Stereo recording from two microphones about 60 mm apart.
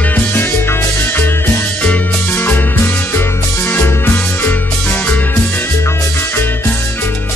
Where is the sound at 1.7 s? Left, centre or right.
Left.